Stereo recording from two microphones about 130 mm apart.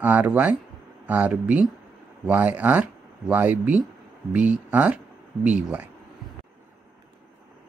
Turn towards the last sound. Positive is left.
turn(degrees=-10)  # may be behind; listen again after turning